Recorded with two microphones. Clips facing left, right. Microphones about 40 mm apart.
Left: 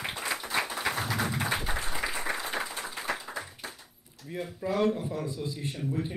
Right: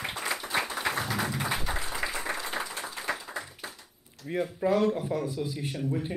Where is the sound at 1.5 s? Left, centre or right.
Left.